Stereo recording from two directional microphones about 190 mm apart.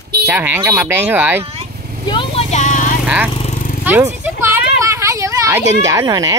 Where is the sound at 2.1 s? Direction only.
25° left (ahead or behind).